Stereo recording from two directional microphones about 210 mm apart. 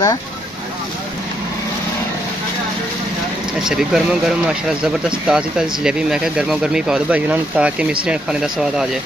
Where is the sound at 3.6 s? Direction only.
Centre (ahead or behind).